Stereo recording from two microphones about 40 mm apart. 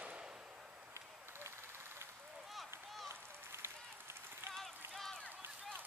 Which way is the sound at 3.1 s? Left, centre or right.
Right.